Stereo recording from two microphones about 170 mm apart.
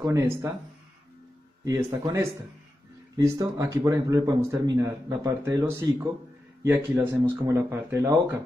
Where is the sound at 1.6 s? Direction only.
20° right (ahead or behind).